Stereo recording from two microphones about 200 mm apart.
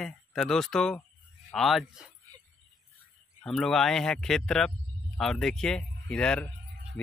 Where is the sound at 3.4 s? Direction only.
Centre (ahead or behind).